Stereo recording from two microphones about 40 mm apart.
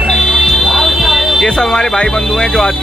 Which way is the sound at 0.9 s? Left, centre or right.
Centre.